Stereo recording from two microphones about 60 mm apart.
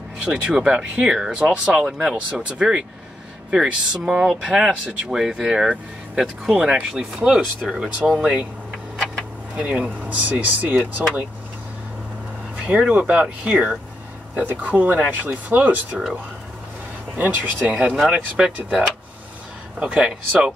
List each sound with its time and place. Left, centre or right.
0.2 s speech: centre
9.6 s speech: centre
12.8 s speech: centre
14.3 s speech: right
17.2 s speech: right